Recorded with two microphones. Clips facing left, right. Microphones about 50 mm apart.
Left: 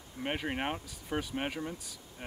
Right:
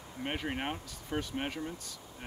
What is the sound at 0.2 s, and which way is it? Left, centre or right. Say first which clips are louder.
Speech: left 2 dB; centre.